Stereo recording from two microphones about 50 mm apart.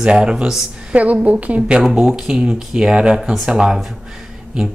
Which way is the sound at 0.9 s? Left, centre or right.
Right.